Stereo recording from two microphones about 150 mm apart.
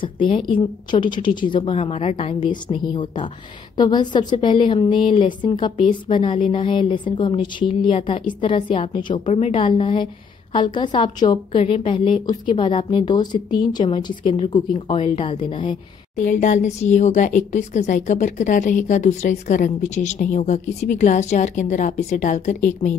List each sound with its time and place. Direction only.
0.0 s a woman's voice: 30° left (ahead or behind)
1.7 s a woman's voice: 45° left (ahead or behind)
16.2 s a woman's voice: 55° left (ahead or behind)